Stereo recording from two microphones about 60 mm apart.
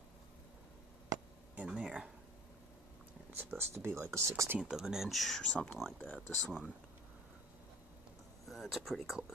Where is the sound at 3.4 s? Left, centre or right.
Right.